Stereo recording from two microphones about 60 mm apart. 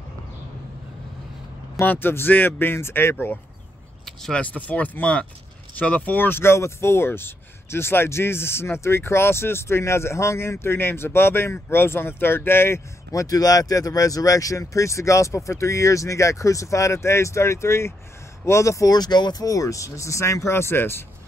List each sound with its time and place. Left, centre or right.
1.9 s speech: left
4.0 s keys jangling: centre
4.6 s speech: left
13.1 s speech: left